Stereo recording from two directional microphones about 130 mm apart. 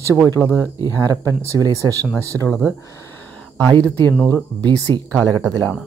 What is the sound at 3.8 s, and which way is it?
Speech, 15° left (ahead or behind).